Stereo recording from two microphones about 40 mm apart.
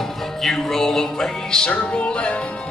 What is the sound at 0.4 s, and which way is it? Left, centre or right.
Music, centre.